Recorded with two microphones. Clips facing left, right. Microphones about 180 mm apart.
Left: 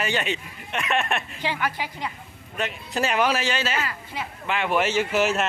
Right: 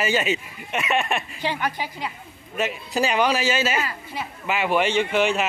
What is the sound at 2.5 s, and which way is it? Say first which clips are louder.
A man's voice: right 3 dB; 5° right (ahead or behind).